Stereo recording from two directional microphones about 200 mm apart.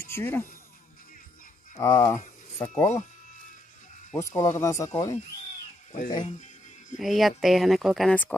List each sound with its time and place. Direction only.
0.0 s speech: 10° left (ahead or behind)
1.8 s speech: 15° left (ahead or behind)
4.2 s speech: 15° left (ahead or behind)
7.0 s speech: centre (ahead or behind)